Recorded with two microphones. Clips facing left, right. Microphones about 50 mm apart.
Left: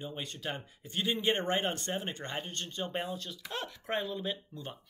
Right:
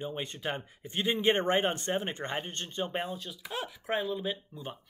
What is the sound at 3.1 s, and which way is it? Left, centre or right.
Speech, centre.